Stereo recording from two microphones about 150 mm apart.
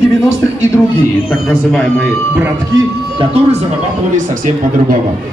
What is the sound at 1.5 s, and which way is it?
Speech, 5° left (ahead or behind).